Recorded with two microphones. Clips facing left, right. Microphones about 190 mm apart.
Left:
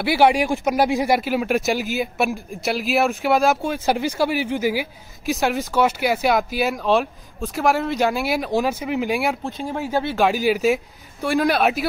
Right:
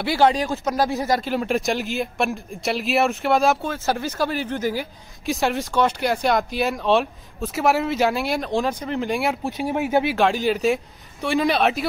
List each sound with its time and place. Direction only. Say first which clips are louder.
0.0 s speech: left 2 dB; 10° left (ahead or behind)
3.6 s speech: left 3 dB; 15° left (ahead or behind)
9.4 s speech: right 3 dB; 15° right (ahead or behind)
10.1 s speech: left 1 dB; 5° left (ahead or behind)